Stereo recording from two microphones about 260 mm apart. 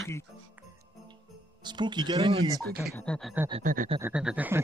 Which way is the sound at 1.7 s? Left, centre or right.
Centre.